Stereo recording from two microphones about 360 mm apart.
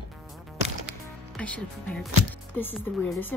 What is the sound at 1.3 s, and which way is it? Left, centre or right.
Speech, centre.